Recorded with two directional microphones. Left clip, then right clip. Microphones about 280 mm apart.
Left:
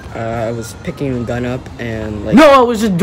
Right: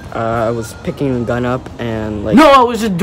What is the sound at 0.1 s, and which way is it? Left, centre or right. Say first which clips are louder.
Speech: right 4 dB; centre.